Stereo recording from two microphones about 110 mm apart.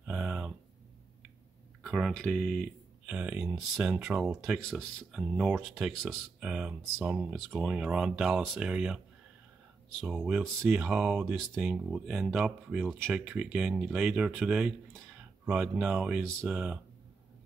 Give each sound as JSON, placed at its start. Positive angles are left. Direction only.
{"t": 0.0, "sound": "a sound", "side_deg": -10}
{"t": 1.8, "sound": "speech", "side_deg": 0}
{"t": 3.1, "sound": "speech", "side_deg": -10}
{"t": 10.0, "sound": "speech", "side_deg": -5}
{"t": 10.6, "sound": "speech", "side_deg": -20}
{"t": 11.1, "sound": "speech", "side_deg": 0}